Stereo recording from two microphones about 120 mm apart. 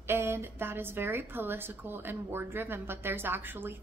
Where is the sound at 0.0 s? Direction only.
20° right (ahead or behind).